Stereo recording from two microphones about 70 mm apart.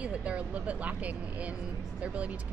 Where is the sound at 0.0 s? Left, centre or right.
Centre.